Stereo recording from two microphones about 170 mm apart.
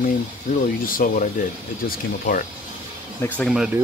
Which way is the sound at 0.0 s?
55° left (ahead or behind).